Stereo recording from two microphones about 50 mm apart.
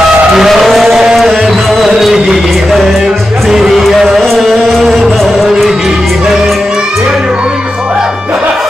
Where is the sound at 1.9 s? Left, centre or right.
Centre.